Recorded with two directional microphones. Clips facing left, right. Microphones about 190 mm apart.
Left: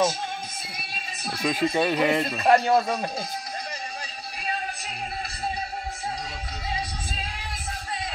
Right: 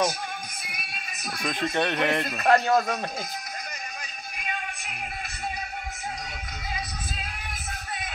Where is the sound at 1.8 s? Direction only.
5° left (ahead or behind).